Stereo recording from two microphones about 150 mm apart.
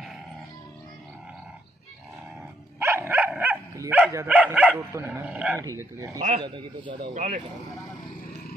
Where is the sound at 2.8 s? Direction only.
15° right (ahead or behind).